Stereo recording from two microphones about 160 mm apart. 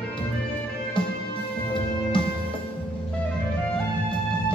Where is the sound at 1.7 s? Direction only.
30° left (ahead or behind).